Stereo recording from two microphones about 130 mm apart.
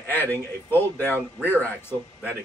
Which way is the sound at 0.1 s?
15° left (ahead or behind).